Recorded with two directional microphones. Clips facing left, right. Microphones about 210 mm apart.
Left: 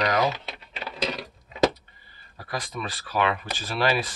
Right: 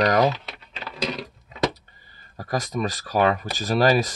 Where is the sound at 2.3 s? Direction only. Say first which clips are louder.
Right 7 dB; 40° right (ahead or behind).